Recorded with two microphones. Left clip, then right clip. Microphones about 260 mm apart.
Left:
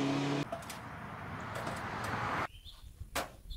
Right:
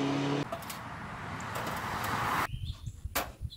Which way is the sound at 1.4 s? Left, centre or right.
Right.